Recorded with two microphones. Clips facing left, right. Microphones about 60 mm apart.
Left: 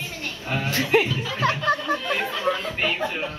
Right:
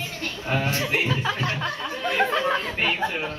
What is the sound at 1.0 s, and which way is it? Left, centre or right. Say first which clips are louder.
Speech: right 3 dB; right.